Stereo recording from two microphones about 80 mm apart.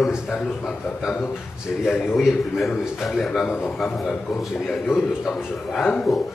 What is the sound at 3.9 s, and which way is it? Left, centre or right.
Speech, centre.